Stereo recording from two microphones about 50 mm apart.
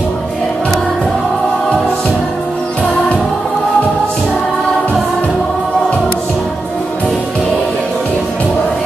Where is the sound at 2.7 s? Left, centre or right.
Left.